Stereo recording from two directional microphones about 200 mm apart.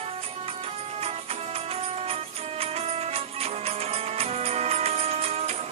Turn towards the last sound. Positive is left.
turn(degrees=-30)  # may be behind; listen again after turning